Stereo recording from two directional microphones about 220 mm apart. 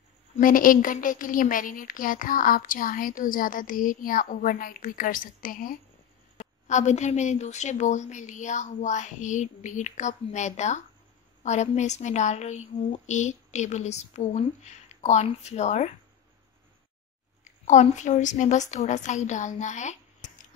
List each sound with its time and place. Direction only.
0.4 s a woman's voice: 40° left (ahead or behind)
17.6 s a woman's voice: 35° left (ahead or behind)